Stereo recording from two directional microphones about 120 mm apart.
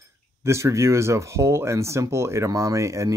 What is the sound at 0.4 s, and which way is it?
Speech, 25° right (ahead or behind).